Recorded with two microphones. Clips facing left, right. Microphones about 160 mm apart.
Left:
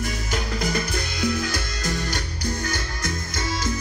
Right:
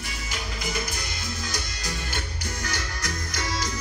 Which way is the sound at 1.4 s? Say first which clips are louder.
Left 6 dB; 55° left (ahead or behind).